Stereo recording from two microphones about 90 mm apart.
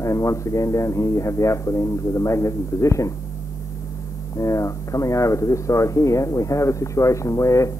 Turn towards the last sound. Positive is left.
turn(degrees=35)  # may be behind; listen again after turning